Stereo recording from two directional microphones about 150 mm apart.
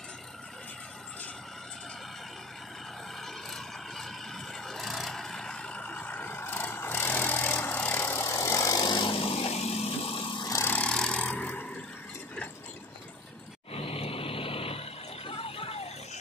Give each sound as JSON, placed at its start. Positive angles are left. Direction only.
{"t": 3.4, "sound": "vehicle", "side_deg": 0}
{"t": 10.5, "sound": "vehicle", "side_deg": 15}
{"t": 13.7, "sound": "vehicle", "side_deg": 40}